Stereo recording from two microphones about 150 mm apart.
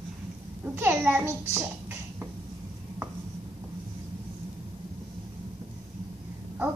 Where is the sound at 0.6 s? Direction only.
15° right (ahead or behind).